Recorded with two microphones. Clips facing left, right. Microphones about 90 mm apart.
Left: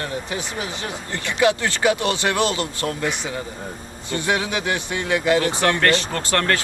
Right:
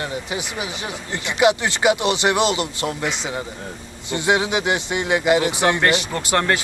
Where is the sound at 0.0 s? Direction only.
15° right (ahead or behind).